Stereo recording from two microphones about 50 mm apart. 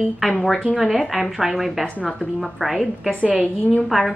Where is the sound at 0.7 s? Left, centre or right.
Centre.